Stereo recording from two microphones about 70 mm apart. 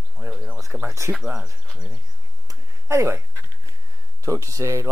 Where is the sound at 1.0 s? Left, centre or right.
Right.